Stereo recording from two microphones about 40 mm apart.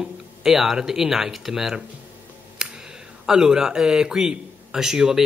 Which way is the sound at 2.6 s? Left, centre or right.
Centre.